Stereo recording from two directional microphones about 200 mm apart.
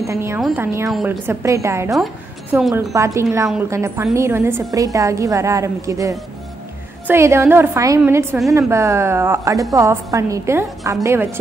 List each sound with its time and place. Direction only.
0.0 s a woman's voice: 15° right (ahead or behind)